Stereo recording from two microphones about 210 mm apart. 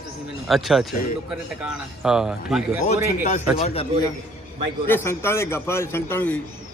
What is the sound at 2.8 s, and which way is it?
A man's voice, 35° left (ahead or behind).